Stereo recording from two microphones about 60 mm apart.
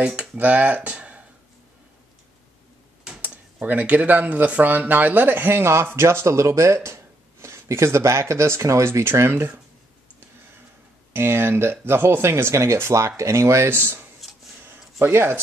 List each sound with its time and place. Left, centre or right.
0.0 s speech: right
3.0 s a sound: centre
3.6 s speech: right
11.1 s speech: right
13.7 s speech: right
14.6 s a sound: right